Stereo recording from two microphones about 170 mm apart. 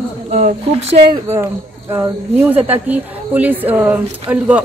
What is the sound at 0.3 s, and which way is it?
Speech, 35° right (ahead or behind).